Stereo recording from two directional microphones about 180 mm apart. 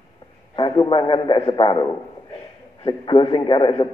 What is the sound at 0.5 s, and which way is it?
A man's voice, 25° left (ahead or behind).